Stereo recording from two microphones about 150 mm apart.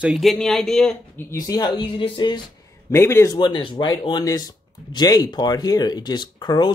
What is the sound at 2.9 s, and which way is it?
Speech, 15° left (ahead or behind).